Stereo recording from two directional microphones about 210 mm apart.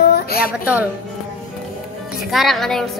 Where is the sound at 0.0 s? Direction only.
50° left (ahead or behind).